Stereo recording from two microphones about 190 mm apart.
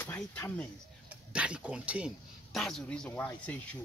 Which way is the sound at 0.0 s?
10° left (ahead or behind).